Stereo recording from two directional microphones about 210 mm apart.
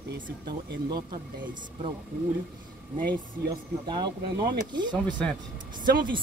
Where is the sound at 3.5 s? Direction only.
20° right (ahead or behind).